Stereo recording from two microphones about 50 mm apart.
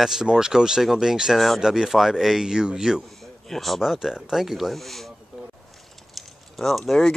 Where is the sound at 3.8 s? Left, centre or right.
Centre.